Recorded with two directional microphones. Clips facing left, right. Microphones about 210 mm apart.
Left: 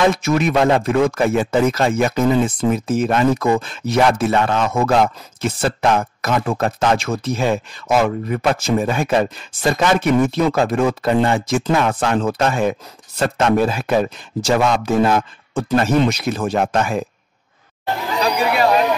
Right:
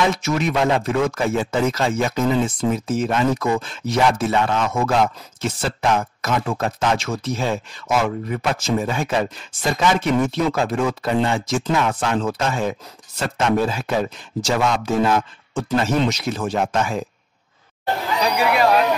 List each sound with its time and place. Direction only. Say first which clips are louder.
0.0 s speech: left 4 dB; 55° left (ahead or behind)